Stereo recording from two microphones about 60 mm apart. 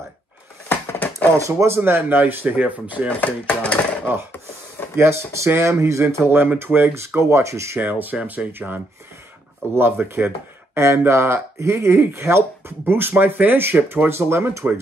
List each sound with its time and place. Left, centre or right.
0.9 s a sound: left
1.8 s speech: right
3.1 s speech: left
4.9 s speech: right
6.1 s speech: right
7.2 s speech: right
7.8 s speech: right